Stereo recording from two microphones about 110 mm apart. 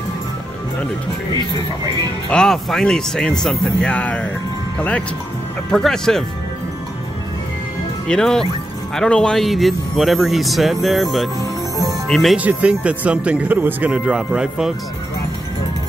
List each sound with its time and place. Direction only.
1.3 s speech: 40° left (ahead or behind)
2.2 s speech: 5° left (ahead or behind)
5.7 s a man's voice: 5° left (ahead or behind)
8.1 s a man's voice: 5° left (ahead or behind)
12.4 s speech: 10° right (ahead or behind)